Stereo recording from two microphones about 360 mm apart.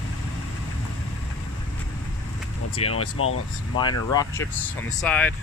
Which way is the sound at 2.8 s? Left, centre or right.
Left.